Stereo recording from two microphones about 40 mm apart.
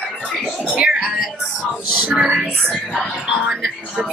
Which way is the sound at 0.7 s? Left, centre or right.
Right.